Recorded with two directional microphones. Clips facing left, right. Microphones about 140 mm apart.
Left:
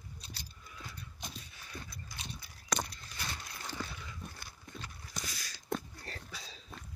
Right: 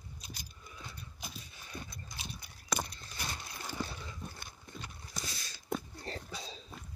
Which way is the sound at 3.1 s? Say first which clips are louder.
Right 1 dB; 20° right (ahead or behind).